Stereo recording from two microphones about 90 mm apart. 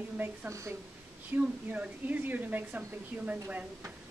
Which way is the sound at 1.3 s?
20° right (ahead or behind).